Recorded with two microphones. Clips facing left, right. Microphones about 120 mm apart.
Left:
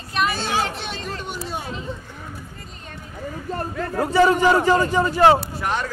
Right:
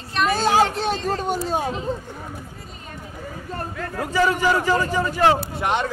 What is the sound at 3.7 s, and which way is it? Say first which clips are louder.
A man's voice: left 5 dB; 30° left (ahead or behind).